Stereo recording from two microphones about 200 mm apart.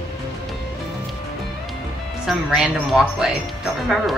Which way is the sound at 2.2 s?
Centre (ahead or behind).